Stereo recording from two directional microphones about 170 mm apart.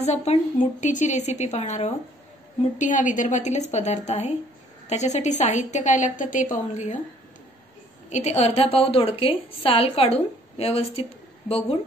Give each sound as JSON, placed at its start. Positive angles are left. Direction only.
{"t": 0.0, "sound": "a woman's voice", "side_deg": 40}
{"t": 8.1, "sound": "a woman's voice", "side_deg": 40}